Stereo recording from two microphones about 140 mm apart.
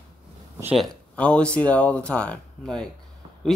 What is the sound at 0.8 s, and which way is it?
Speech, 5° left (ahead or behind).